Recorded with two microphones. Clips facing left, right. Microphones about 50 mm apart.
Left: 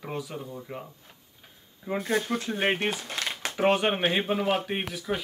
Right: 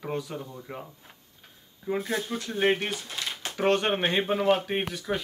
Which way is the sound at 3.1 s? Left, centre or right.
Left.